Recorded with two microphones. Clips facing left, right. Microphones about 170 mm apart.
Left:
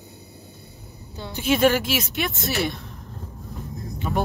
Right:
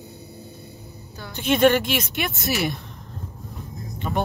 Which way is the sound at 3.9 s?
Centre (ahead or behind).